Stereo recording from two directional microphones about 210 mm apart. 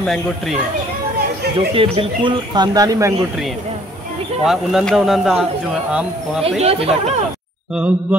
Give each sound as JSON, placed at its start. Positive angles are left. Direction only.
{"t": 1.8, "sound": "speech", "side_deg": -25}
{"t": 4.5, "sound": "speech", "side_deg": 0}
{"t": 6.6, "sound": "speech", "side_deg": -30}
{"t": 7.7, "sound": "a sound", "side_deg": -5}